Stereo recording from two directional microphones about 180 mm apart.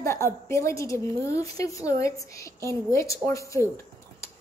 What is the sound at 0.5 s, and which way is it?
A woman's voice, 15° left (ahead or behind).